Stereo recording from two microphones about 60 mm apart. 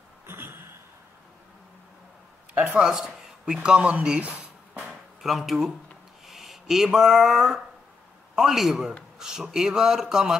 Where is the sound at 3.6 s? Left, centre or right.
Centre.